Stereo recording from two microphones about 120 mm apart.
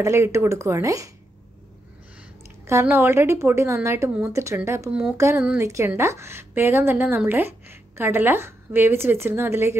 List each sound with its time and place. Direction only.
0.0 s a woman's voice: 25° right (ahead or behind)
2.6 s a woman's voice: 20° right (ahead or behind)